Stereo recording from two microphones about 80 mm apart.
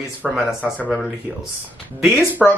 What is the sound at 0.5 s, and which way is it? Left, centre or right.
Speech, centre.